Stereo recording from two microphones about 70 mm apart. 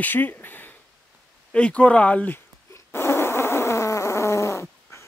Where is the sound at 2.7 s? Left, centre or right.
Left.